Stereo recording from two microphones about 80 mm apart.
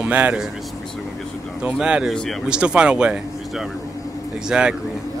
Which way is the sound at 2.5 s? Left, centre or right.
Centre.